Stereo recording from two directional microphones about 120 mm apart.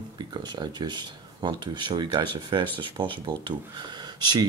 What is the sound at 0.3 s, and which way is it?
Speech, 40° right (ahead or behind).